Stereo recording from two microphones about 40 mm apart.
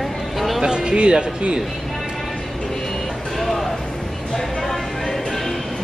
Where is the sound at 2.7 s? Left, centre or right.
Centre.